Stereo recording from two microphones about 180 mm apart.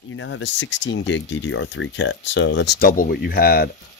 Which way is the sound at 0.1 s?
90° left.